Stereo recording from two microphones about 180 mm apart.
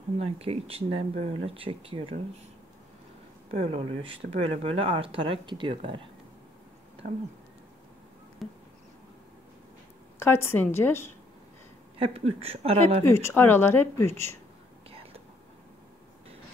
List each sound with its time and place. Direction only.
0.2 s speech: 35° right (ahead or behind)
3.5 s speech: 35° right (ahead or behind)
8.4 s insect: centre (ahead or behind)
10.1 s speech: 15° left (ahead or behind)
12.0 s speech: 35° right (ahead or behind)
13.0 s speech: 15° left (ahead or behind)
14.9 s whispering: 30° right (ahead or behind)